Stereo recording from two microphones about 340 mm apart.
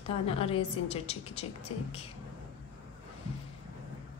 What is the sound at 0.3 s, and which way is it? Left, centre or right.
A woman's voice, centre.